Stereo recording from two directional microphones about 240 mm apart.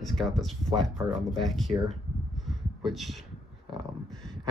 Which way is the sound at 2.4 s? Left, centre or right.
Centre.